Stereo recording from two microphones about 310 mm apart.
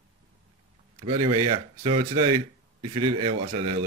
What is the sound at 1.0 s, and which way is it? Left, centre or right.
Speech, centre.